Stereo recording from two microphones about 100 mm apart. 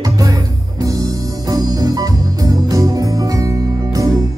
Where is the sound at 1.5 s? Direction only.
35° right (ahead or behind).